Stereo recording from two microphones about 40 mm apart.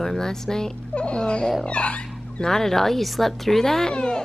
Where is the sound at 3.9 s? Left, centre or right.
Left.